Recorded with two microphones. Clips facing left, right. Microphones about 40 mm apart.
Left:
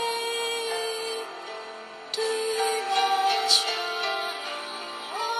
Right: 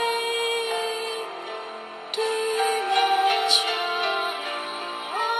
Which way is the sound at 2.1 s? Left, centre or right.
Right.